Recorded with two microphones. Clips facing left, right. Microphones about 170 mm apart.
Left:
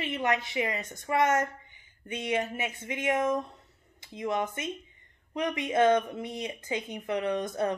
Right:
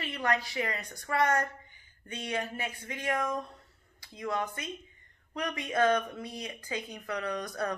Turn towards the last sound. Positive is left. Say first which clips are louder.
# left 5 dB
turn(degrees=25)  # may be behind; listen again after turning